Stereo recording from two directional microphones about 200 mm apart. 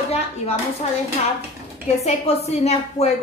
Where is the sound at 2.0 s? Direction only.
30° left (ahead or behind).